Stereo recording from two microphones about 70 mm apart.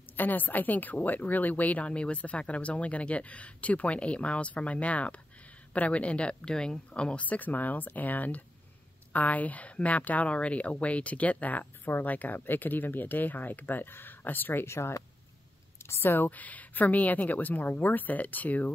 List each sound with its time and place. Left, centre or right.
0.2 s speech: left